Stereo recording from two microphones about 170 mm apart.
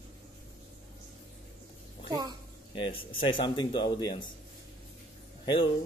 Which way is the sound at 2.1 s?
25° right (ahead or behind).